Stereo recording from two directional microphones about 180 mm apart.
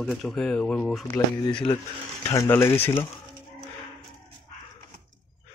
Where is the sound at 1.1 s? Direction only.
25° left (ahead or behind).